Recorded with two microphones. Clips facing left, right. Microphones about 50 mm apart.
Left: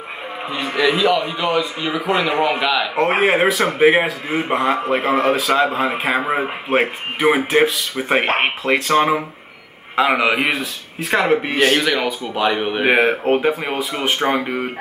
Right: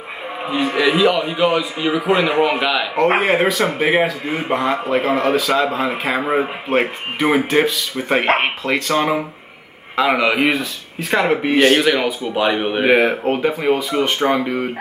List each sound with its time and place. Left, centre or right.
0.4 s speech: centre
3.1 s speech: centre
12.9 s speech: centre